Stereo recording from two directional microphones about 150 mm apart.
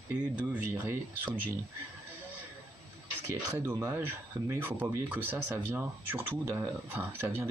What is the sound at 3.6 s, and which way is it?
Speech, 15° right (ahead or behind).